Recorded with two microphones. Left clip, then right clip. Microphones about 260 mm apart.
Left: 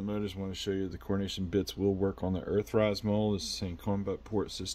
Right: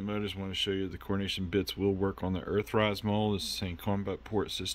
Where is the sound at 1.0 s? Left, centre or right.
Centre.